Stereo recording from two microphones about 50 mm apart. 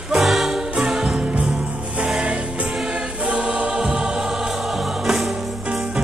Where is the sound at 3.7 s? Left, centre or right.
Centre.